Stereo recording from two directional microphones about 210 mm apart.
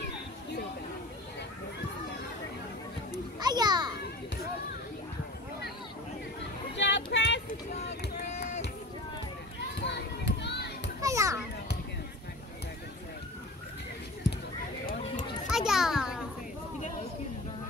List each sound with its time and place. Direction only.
3.3 s children playing: 20° right (ahead or behind)
6.7 s a sound: 55° left (ahead or behind)
9.8 s children playing: 55° left (ahead or behind)
11.0 s children playing: 15° right (ahead or behind)
15.5 s children playing: centre (ahead or behind)